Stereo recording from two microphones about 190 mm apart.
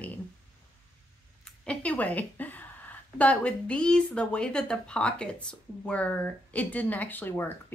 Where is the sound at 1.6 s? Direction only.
5° left (ahead or behind).